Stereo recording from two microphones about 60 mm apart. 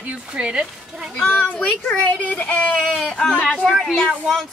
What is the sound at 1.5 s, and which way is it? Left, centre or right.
Sheep, centre.